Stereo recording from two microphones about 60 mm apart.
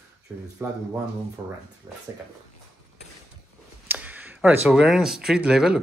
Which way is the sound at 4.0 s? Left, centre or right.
Right.